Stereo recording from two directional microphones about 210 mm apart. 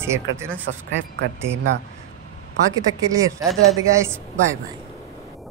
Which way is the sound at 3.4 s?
Centre (ahead or behind).